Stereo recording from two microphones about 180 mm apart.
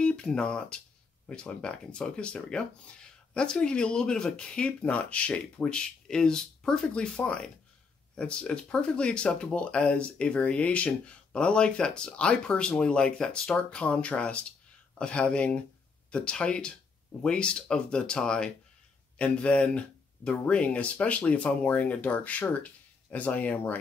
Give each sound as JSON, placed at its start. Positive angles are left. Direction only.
{"t": 0.0, "sound": "speech", "side_deg": 5}